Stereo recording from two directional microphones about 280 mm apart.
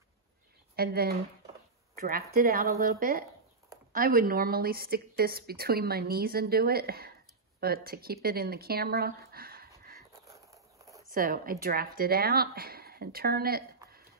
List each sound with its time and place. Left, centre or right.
0.7 s a woman's voice: right
10.2 s a sound: centre
11.1 s a woman's voice: right